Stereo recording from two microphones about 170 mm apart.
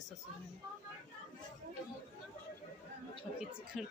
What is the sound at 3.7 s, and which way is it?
Speech, centre (ahead or behind).